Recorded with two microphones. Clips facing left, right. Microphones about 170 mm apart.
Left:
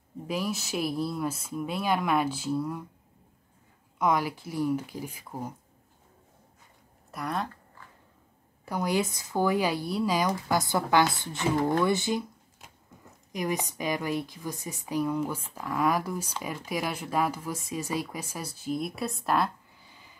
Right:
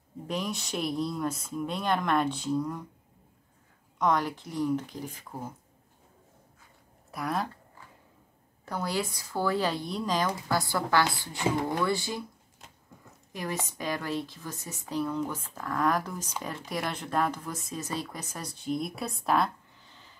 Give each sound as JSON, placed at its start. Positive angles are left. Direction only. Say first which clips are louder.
{"t": 0.3, "sound": "speech", "louder": "left 2 dB", "side_deg": 5}
{"t": 4.0, "sound": "speech", "louder": "left 1 dB", "side_deg": 10}
{"t": 7.1, "sound": "speech", "louder": "right 1 dB", "side_deg": 0}
{"t": 8.6, "sound": "speech", "louder": "left 4 dB", "side_deg": 15}
{"t": 13.3, "sound": "speech", "louder": "left 4 dB", "side_deg": 15}